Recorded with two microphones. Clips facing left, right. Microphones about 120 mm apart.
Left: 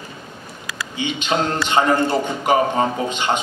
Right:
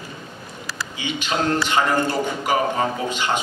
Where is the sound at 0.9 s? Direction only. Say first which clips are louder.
Left 4 dB; 20° left (ahead or behind).